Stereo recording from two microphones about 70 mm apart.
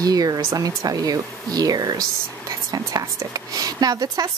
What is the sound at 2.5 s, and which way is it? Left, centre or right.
A woman's voice, right.